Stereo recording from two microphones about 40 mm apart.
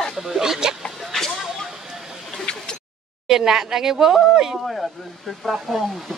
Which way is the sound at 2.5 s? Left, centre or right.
Left.